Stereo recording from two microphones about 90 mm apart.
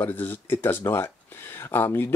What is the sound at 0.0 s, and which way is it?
Speech, 20° left (ahead or behind).